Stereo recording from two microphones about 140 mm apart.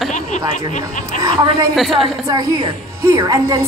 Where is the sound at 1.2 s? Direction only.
25° right (ahead or behind).